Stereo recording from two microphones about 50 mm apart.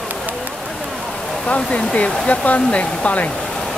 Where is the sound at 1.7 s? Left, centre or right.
Left.